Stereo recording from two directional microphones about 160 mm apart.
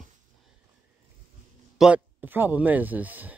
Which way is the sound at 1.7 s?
5° right (ahead or behind).